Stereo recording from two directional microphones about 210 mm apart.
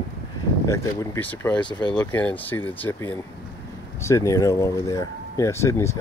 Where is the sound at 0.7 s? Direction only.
15° left (ahead or behind).